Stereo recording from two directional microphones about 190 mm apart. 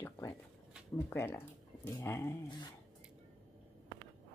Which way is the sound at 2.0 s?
15° left (ahead or behind).